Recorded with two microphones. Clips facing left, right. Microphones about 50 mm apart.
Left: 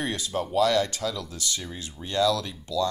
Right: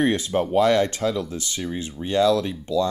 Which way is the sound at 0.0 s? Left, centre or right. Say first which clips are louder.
Right 8 dB; right.